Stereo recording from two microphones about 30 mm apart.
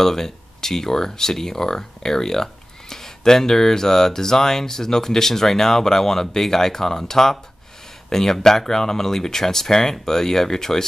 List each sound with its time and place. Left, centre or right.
0.0 s speech: centre